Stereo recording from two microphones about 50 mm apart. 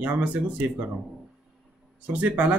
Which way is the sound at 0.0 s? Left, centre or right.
Right.